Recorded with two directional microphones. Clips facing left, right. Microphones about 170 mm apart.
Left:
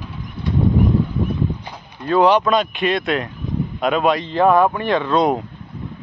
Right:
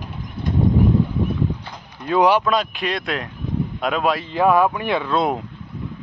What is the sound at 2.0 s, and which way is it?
Speech, 10° right (ahead or behind).